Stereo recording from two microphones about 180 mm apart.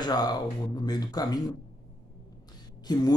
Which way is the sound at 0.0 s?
20° left (ahead or behind).